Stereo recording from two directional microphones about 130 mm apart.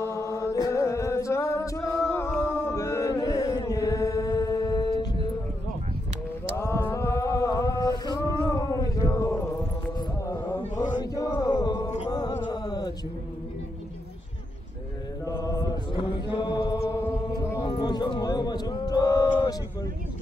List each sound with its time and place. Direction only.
0.0 s singing: 20° left (ahead or behind)
2.4 s chant: 20° left (ahead or behind)
6.5 s mantra: 20° left (ahead or behind)
11.0 s a sound: 30° left (ahead or behind)
12.4 s mantra: 30° left (ahead or behind)
15.2 s chant: 30° left (ahead or behind)
17.6 s a sound: 35° left (ahead or behind)